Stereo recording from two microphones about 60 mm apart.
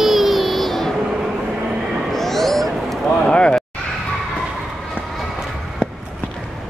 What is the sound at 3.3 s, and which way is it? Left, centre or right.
Speech, centre.